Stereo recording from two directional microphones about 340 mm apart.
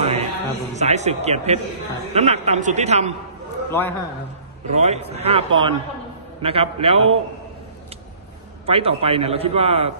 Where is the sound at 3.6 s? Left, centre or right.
Centre.